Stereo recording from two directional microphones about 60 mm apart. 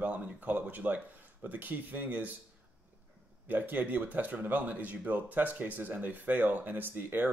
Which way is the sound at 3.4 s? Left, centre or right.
Right.